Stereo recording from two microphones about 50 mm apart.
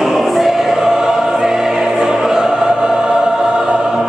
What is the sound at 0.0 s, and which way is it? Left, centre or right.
Choir, centre.